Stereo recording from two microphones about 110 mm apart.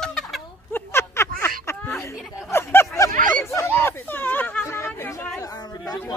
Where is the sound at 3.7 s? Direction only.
20° left (ahead or behind).